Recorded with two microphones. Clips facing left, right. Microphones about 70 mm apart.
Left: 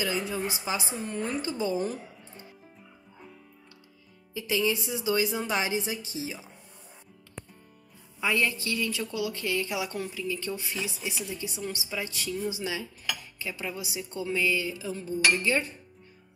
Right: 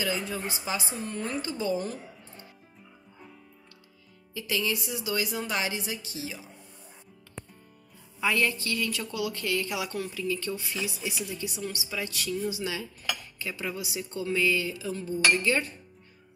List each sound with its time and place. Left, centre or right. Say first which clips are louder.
0.0 s a woman's voice: left 1 dB; centre
4.3 s a woman's voice: left 3 dB; centre
8.2 s a woman's voice: right 1 dB; centre
13.4 s a woman's voice: right 1 dB; centre